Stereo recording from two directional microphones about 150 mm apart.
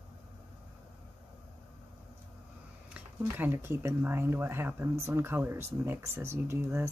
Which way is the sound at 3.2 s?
15° right (ahead or behind).